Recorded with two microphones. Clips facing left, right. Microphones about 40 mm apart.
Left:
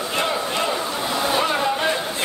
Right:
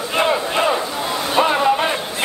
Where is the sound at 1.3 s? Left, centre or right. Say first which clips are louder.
Right 8 dB; right.